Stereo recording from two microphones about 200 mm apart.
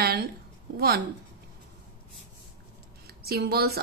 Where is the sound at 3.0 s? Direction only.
50° right (ahead or behind).